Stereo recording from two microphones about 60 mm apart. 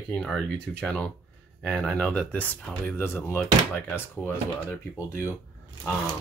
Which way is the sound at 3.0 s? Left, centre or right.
Left.